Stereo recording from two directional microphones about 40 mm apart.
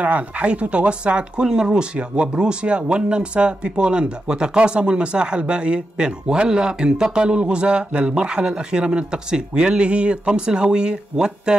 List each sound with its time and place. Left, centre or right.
0.0 s speech: right